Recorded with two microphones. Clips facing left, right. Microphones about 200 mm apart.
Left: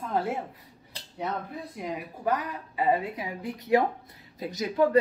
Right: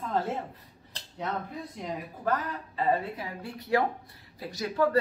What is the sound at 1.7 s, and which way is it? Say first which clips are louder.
A woman's voice: left 3 dB; 10° left (ahead or behind).